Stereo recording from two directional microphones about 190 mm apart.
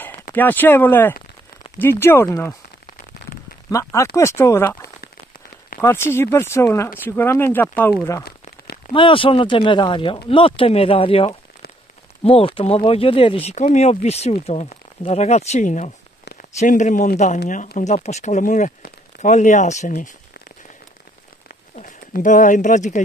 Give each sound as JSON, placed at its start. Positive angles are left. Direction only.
{"t": 0.3, "sound": "speech", "side_deg": 10}
{"t": 3.7, "sound": "speech", "side_deg": 15}
{"t": 5.8, "sound": "speech", "side_deg": 15}
{"t": 8.3, "sound": "a sound", "side_deg": 55}
{"t": 8.9, "sound": "speech", "side_deg": 25}
{"t": 21.7, "sound": "speech", "side_deg": 45}